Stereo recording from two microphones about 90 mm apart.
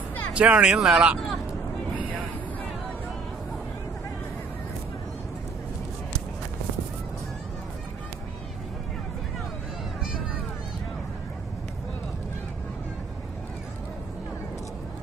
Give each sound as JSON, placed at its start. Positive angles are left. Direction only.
{"t": 0.3, "sound": "speech", "side_deg": -10}